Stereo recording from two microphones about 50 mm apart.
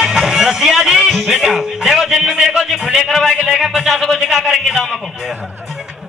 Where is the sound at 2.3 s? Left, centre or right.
Centre.